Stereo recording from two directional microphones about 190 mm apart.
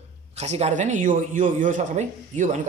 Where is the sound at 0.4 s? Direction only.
35° right (ahead or behind).